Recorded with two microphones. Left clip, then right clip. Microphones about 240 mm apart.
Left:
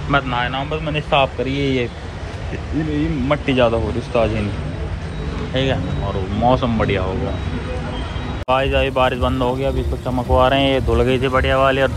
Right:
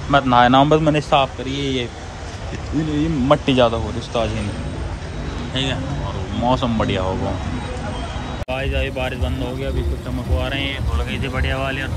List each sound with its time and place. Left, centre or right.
0.1 s a man's voice: right
1.1 s speech: centre
3.3 s speech: centre
5.5 s speech: centre
8.5 s speech: centre